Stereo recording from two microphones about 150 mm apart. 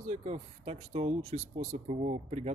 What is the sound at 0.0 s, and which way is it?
Speech, 50° right (ahead or behind).